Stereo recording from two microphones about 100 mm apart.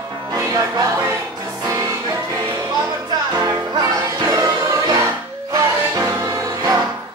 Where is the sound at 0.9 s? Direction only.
30° right (ahead or behind).